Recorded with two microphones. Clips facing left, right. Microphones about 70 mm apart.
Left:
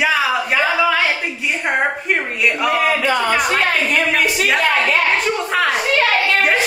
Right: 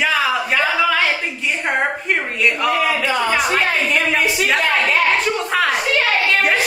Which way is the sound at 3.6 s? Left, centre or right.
Left.